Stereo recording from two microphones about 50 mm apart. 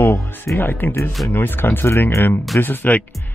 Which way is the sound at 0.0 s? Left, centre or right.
Left.